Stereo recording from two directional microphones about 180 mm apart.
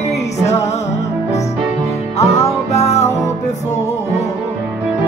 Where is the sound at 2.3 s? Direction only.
35° left (ahead or behind).